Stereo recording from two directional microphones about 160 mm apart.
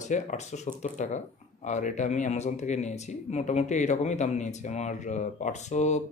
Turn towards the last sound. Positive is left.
turn(degrees=45)  # may be behind; listen again after turning